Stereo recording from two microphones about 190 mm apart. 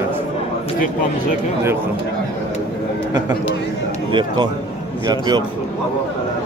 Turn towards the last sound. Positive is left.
turn(degrees=-20)  # may be behind; listen again after turning